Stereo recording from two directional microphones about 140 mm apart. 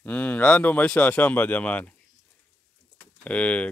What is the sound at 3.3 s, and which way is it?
Speech, 10° left (ahead or behind).